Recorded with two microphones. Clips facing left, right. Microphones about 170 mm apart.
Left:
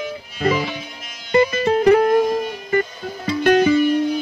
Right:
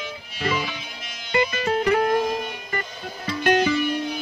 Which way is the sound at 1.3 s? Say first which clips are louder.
Left 6 dB; 35° left (ahead or behind).